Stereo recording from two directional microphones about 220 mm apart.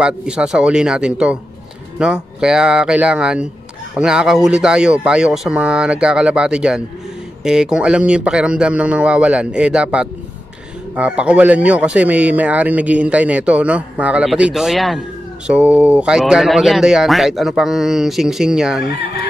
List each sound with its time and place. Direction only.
0.0 s a man's voice: 5° right (ahead or behind)